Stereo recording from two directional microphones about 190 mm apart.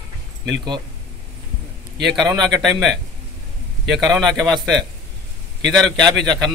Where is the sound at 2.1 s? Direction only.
20° right (ahead or behind).